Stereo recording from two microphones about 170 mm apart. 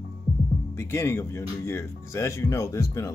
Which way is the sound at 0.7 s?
15° left (ahead or behind).